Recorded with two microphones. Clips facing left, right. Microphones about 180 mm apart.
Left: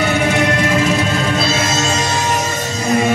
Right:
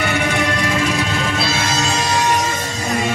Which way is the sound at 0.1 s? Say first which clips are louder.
Left 4 dB; 25° left (ahead or behind).